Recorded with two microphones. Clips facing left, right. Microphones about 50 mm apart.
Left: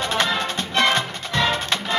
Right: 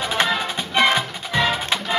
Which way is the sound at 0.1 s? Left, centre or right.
Centre.